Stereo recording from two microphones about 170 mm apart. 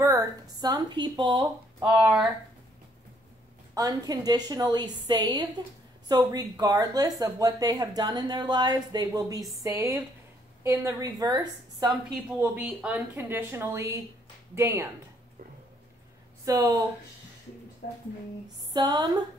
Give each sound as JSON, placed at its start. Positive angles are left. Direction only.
{"t": 0.0, "sound": "speech", "side_deg": -20}
{"t": 1.9, "sound": "speech", "side_deg": -5}
{"t": 3.7, "sound": "speech", "side_deg": -20}
{"t": 11.9, "sound": "speech", "side_deg": -10}
{"t": 16.4, "sound": "speech", "side_deg": -20}
{"t": 17.8, "sound": "speech", "side_deg": 60}
{"t": 18.7, "sound": "speech", "side_deg": -25}